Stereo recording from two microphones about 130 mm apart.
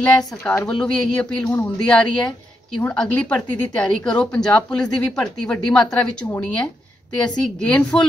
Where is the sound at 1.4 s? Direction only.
20° left (ahead or behind).